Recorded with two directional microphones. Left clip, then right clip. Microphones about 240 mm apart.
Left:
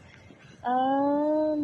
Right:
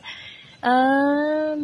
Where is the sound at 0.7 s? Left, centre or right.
Right.